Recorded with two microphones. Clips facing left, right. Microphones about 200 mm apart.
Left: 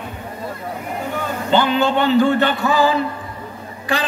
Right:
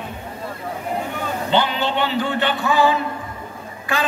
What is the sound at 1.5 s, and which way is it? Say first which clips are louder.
A man's voice: left 5 dB; 45° left (ahead or behind).